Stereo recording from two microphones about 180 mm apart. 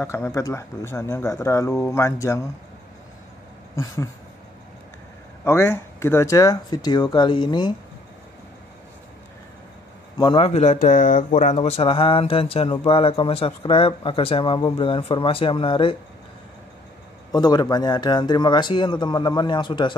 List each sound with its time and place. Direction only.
0.0 s speech: 15° left (ahead or behind)
3.7 s speech: 15° left (ahead or behind)
5.4 s speech: 15° left (ahead or behind)
10.1 s speech: 30° left (ahead or behind)
17.3 s speech: 20° left (ahead or behind)